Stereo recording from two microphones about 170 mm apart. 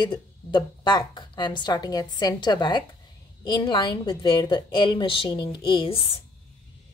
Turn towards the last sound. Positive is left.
turn(degrees=35)  # may be behind; listen again after turning